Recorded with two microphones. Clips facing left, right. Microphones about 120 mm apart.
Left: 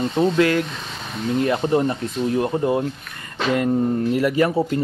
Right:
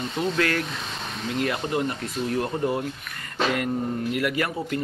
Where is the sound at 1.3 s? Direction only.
25° left (ahead or behind).